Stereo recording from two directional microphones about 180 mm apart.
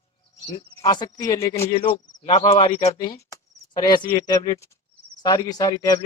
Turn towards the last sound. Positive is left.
turn(degrees=20)  # may be behind; listen again after turning